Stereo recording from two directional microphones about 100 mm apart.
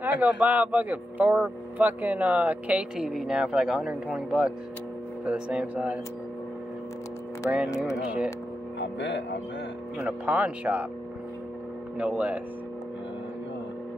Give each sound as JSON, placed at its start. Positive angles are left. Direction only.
{"t": 0.0, "sound": "speech", "side_deg": -15}
{"t": 7.4, "sound": "speech", "side_deg": -15}
{"t": 9.9, "sound": "speech", "side_deg": -15}
{"t": 12.0, "sound": "speech", "side_deg": -10}